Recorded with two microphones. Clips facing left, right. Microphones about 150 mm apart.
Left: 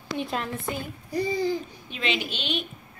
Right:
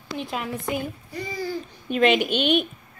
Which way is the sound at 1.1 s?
30° left (ahead or behind).